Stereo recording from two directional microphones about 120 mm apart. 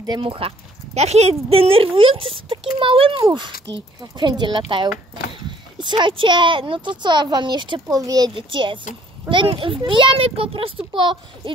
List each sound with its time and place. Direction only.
0.2 s speech: 50° right (ahead or behind); by 1.3 s 65° right (ahead or behind)
1.5 s a child's voice: 55° right (ahead or behind); by 8.3 s 30° right (ahead or behind)
8.4 s a child's voice: 40° right (ahead or behind)